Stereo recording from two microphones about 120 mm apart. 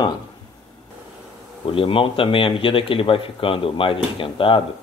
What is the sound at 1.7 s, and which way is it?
Speech, 50° left (ahead or behind).